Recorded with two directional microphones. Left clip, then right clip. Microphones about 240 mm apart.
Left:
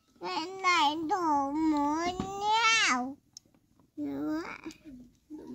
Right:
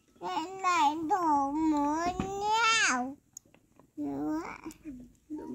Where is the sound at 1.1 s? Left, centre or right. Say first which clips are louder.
Right 1 dB; right.